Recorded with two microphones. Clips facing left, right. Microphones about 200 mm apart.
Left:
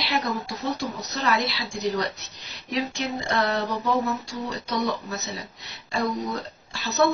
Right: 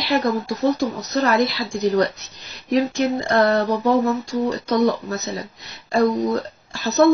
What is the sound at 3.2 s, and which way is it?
Speech, 50° right (ahead or behind).